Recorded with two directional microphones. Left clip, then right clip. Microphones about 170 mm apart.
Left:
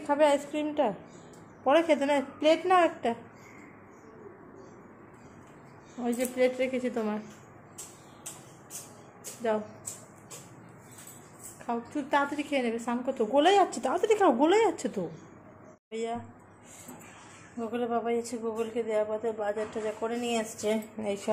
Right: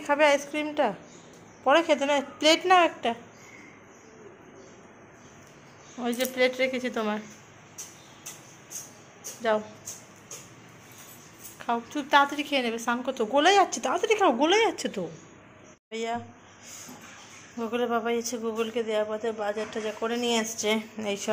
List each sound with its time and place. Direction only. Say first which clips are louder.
0.0 s a man's voice: right 2 dB; 5° left (ahead or behind)
2.3 s a man's voice: right 4 dB; 5° right (ahead or behind)
6.0 s a man's voice: right 2 dB; 5° left (ahead or behind)
11.6 s a woman's voice: right 4 dB; centre (ahead or behind)
17.6 s a man's voice: right 3 dB; 5° left (ahead or behind)